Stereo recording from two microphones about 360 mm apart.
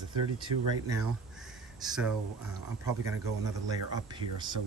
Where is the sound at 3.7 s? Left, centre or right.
Centre.